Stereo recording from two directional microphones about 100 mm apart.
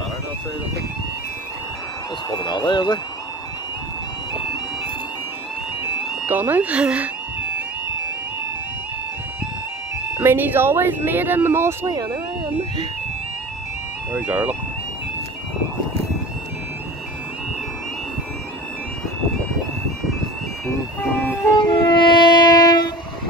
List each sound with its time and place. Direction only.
2.2 s speech: 45° left (ahead or behind)
6.2 s speech: 20° right (ahead or behind)
10.1 s speech: 20° right (ahead or behind)
14.1 s speech: 15° right (ahead or behind)
21.5 s train: 45° left (ahead or behind)